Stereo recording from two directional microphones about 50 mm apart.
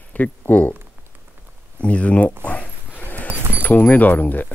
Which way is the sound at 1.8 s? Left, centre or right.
Left.